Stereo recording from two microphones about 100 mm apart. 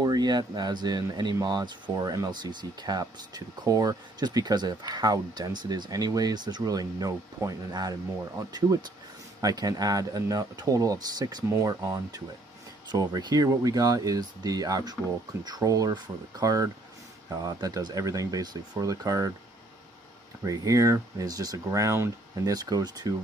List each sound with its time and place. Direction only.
0.0 s speech: 45° right (ahead or behind)
9.4 s speech: 40° right (ahead or behind)
20.4 s speech: 35° right (ahead or behind)
22.3 s speech: 40° right (ahead or behind)